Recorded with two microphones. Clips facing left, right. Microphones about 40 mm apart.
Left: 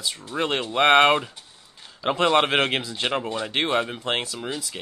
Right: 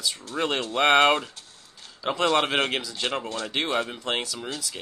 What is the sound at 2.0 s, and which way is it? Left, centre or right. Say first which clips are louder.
Speech: left 3 dB; left.